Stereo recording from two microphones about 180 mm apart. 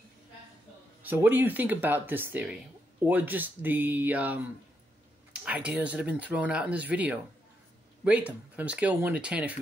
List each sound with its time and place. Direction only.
1.0 s speech: 10° right (ahead or behind)